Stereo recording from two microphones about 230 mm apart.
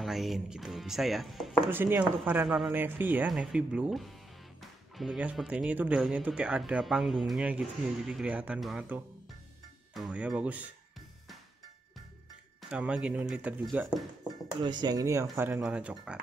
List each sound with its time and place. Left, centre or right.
0.0 s speech: centre
12.6 s speech: centre
14.6 s speech: centre